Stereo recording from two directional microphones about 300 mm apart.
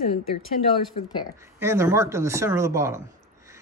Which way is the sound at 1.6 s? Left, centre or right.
Centre.